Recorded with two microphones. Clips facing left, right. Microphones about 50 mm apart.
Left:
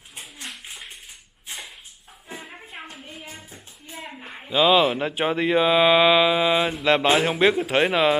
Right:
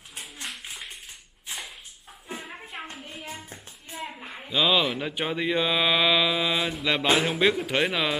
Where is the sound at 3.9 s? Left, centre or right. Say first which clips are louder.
Right 1 dB; centre; by 6.7 s left.